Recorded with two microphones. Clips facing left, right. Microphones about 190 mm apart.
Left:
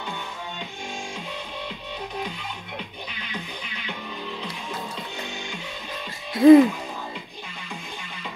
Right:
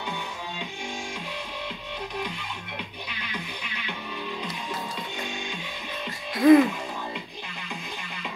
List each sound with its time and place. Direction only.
6.3 s music: 30° left (ahead or behind)